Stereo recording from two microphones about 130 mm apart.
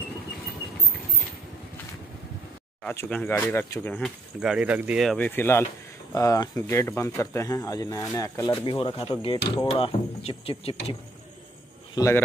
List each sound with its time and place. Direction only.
3.1 s speech: 10° left (ahead or behind)
4.4 s speech: 5° right (ahead or behind)
5.0 s speech: 5° left (ahead or behind)
5.3 s speech: 15° left (ahead or behind)
8.5 s speech: 40° left (ahead or behind)
11.9 s speech: 25° left (ahead or behind)